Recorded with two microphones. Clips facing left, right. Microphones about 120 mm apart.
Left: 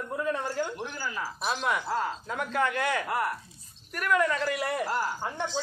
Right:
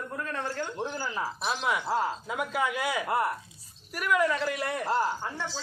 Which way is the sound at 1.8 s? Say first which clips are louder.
Right 2 dB; 20° right (ahead or behind).